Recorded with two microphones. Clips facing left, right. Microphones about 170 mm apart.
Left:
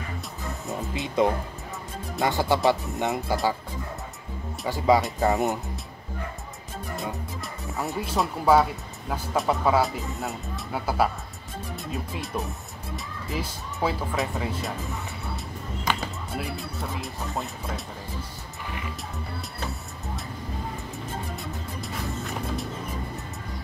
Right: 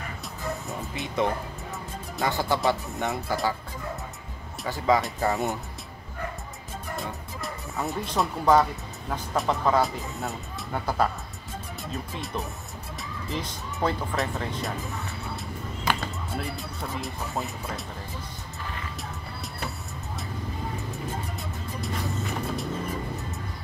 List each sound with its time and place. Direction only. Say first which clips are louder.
0.7 s speech: left 3 dB; 20° left (ahead or behind)
4.6 s speech: left 2 dB; 15° left (ahead or behind)
7.4 s speech: right 1 dB; centre (ahead or behind)
16.0 s speech: even; centre (ahead or behind)
21.8 s music: right 2 dB; centre (ahead or behind)